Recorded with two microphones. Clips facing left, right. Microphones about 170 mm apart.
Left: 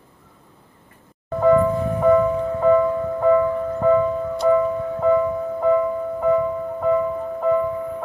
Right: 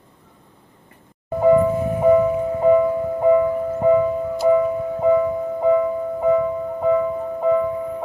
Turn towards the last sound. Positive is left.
turn(degrees=-10)  # may be behind; listen again after turning